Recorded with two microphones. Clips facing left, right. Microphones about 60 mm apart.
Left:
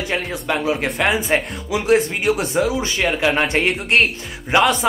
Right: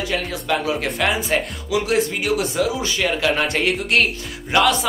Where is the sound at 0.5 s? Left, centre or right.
Centre.